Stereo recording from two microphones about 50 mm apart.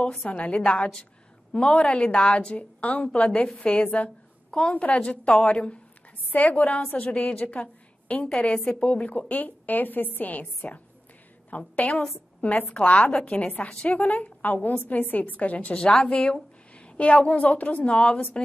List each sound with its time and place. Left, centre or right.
0.2 s a woman's voice: left
1.5 s a woman's voice: centre
7.6 s a sound: left
8.6 s a woman's voice: left